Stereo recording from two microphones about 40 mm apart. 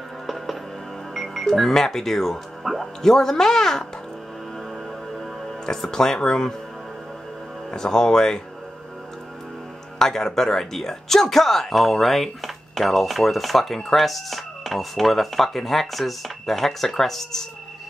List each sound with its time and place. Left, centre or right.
1.1 s speech: centre
5.7 s speech: centre
7.7 s speech: centre
9.9 s speech: centre